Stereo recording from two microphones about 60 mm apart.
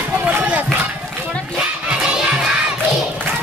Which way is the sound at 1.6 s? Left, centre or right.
Centre.